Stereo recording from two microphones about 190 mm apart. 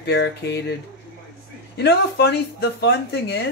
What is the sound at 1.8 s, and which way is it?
Speech, 60° left (ahead or behind).